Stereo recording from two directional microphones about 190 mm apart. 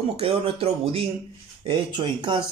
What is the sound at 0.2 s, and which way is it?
Speech, 30° right (ahead or behind).